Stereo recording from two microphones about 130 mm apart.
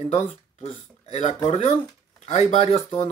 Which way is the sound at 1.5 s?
55° left (ahead or behind).